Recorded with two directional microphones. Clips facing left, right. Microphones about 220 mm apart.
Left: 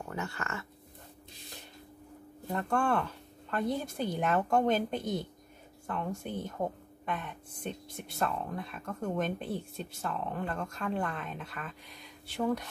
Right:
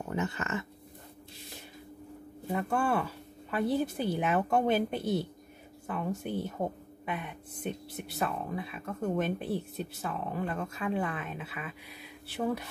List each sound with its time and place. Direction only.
0.1 s speech: 20° right (ahead or behind)
2.4 s speech: 5° right (ahead or behind)